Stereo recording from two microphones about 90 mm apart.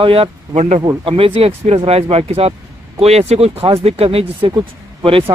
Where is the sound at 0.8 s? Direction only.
70° right (ahead or behind); by 2.5 s 90° right.